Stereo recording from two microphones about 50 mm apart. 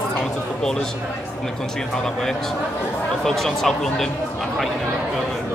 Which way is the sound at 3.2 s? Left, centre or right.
Centre.